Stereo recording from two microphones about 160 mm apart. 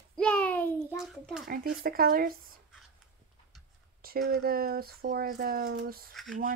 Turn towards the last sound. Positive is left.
turn(degrees=0)  # may be behind; listen again after turning